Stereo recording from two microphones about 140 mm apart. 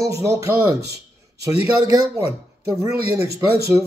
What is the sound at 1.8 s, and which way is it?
Speech, 30° right (ahead or behind).